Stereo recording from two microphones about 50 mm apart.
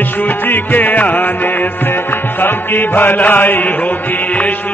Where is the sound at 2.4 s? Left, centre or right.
Left.